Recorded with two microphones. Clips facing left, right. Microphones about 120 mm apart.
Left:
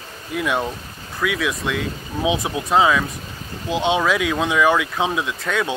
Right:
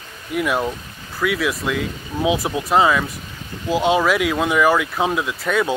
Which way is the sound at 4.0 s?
15° right (ahead or behind).